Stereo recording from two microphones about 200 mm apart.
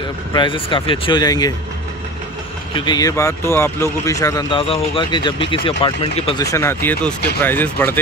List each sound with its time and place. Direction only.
0.3 s speech: 25° left (ahead or behind)
2.7 s speech: 20° left (ahead or behind)
6.4 s speech: 15° left (ahead or behind)